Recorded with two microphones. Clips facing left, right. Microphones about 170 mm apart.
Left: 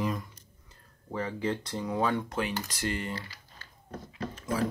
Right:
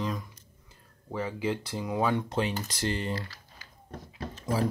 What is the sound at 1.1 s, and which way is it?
Speech, 5° right (ahead or behind).